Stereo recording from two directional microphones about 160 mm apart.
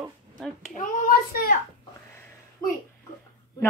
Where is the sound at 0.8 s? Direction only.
55° left (ahead or behind).